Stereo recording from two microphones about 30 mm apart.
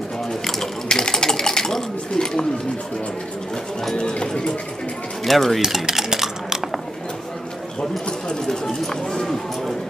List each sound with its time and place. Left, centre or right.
0.3 s a sound: centre
0.8 s sewing machine: left
3.9 s clip-clop: left
5.2 s speech: centre
5.6 s dishes: centre
8.8 s speech: centre